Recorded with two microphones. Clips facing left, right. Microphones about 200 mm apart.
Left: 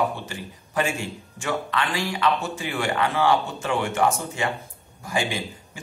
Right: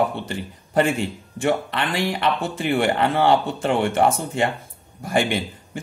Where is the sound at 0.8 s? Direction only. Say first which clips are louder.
Right 6 dB; 55° right (ahead or behind).